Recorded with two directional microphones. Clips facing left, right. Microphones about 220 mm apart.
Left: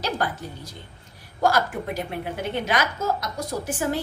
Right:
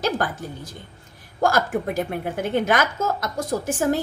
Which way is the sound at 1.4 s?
50° right (ahead or behind).